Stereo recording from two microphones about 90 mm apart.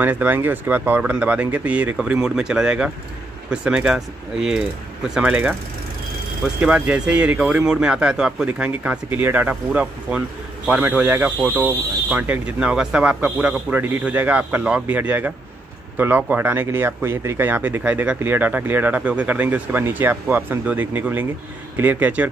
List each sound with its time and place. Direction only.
0.0 s speech: 20° right (ahead or behind)